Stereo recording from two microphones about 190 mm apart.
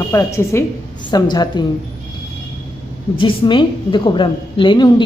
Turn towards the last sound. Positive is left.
turn(degrees=25)  # may be behind; listen again after turning